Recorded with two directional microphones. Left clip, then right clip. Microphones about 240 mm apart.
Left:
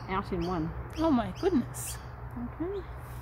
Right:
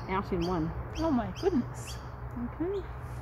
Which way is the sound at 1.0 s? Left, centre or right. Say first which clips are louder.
Left 2 dB; left.